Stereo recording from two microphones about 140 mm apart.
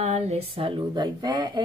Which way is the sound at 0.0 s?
50° right (ahead or behind).